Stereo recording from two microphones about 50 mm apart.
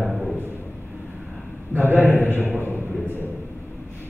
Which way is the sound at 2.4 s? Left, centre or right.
Left.